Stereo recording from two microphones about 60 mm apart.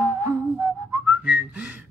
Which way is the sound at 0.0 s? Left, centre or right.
Right.